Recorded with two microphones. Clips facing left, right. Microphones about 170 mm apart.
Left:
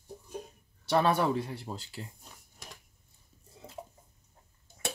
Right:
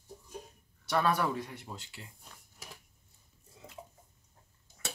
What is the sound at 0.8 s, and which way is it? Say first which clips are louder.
Speech: left 3 dB; 25° left (ahead or behind).